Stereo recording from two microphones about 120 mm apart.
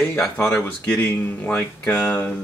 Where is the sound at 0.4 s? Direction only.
20° left (ahead or behind).